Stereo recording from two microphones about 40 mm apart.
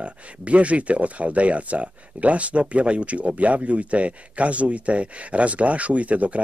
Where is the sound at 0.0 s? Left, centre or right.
Right.